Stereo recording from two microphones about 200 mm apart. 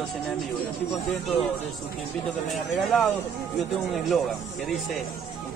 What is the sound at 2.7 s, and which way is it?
Speech, centre (ahead or behind).